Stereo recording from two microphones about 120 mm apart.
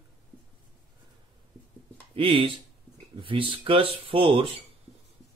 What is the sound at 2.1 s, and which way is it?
Speech, 45° right (ahead or behind).